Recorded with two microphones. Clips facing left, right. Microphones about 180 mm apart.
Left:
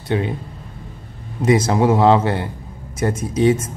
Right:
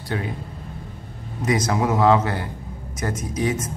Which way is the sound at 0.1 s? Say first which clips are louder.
Left 7 dB; 20° left (ahead or behind).